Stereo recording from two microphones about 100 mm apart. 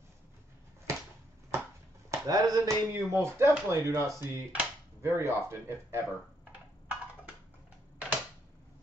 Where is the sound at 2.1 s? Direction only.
40° right (ahead or behind).